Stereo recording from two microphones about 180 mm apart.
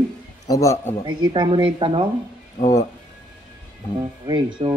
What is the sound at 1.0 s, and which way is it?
Speech, 25° right (ahead or behind).